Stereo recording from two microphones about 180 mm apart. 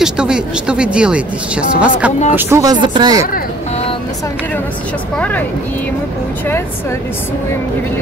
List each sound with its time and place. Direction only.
0.0 s speech: 5° right (ahead or behind)
2.3 s speech: 20° right (ahead or behind)